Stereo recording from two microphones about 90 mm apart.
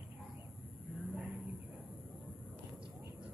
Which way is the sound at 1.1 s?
20° right (ahead or behind).